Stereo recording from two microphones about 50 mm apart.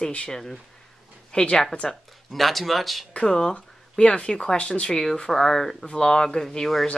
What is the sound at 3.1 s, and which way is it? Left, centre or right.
Speech, centre.